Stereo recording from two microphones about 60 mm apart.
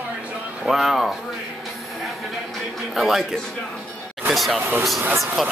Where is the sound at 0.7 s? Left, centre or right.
Centre.